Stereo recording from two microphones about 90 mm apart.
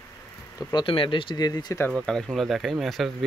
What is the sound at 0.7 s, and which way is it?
Speech, 75° left (ahead or behind).